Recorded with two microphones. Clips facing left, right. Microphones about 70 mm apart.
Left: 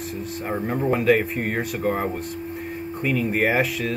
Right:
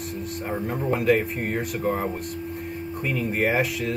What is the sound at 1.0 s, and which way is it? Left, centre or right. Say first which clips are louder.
Speech: even; left.